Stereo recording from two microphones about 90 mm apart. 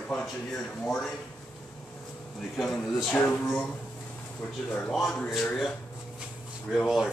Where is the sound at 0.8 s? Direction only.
5° left (ahead or behind).